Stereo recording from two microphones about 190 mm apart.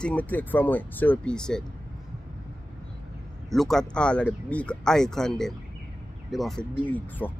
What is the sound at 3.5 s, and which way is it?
Speech, centre (ahead or behind).